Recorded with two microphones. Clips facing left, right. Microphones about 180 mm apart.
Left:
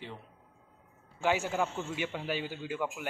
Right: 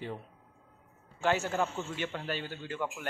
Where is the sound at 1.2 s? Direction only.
10° left (ahead or behind).